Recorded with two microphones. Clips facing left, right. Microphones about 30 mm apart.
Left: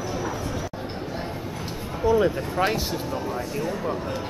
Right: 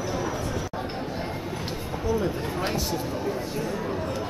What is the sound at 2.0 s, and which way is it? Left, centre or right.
Speech, left.